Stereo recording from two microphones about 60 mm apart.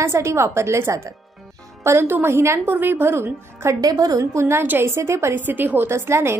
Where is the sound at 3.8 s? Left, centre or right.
Right.